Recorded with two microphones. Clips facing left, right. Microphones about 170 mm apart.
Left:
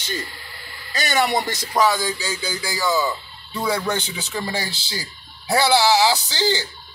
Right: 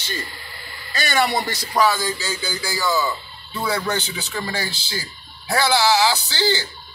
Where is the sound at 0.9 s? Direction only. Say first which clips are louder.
Even; 20° left (ahead or behind).